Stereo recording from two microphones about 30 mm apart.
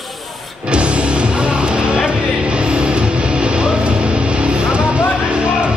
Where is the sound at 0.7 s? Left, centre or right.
Right.